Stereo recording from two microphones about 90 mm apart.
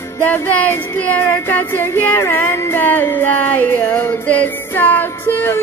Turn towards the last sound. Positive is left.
turn(degrees=20)  # may be behind; listen again after turning